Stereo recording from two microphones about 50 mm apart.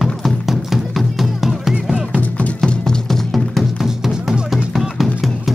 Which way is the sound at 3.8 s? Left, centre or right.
Centre.